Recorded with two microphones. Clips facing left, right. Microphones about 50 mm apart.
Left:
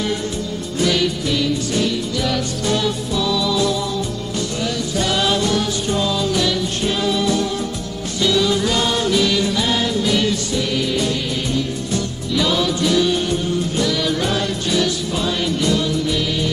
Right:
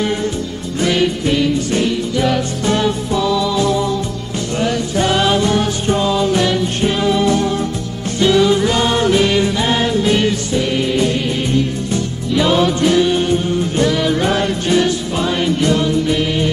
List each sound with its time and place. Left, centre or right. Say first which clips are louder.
0.7 s music: right 3 dB; right